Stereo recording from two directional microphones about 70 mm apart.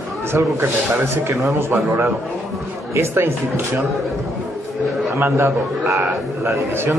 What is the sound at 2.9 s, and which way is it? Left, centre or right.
Speech, right.